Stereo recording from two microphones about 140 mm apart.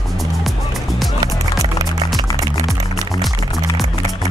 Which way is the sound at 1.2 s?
30° right (ahead or behind).